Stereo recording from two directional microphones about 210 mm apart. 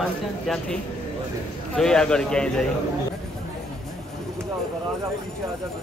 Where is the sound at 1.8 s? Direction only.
5° left (ahead or behind).